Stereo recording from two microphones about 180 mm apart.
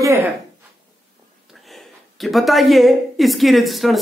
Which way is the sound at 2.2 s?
Centre (ahead or behind).